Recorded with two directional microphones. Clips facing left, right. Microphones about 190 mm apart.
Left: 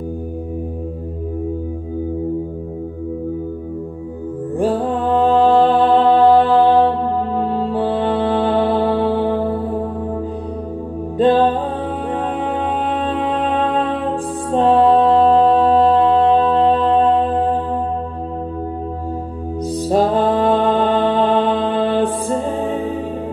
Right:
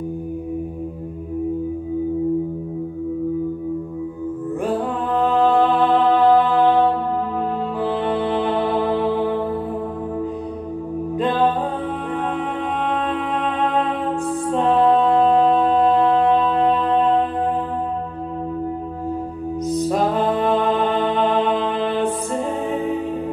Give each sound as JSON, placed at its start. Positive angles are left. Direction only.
{"t": 4.6, "sound": "mantra", "side_deg": 30}
{"t": 7.3, "sound": "music", "side_deg": 30}
{"t": 11.1, "sound": "music", "side_deg": 30}
{"t": 14.5, "sound": "mantra", "side_deg": 30}
{"t": 19.7, "sound": "music", "side_deg": 30}